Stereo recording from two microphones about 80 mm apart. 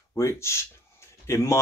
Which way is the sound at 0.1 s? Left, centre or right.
Left.